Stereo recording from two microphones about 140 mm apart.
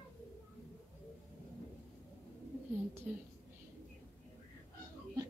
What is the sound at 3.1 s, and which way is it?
Speech, 5° right (ahead or behind).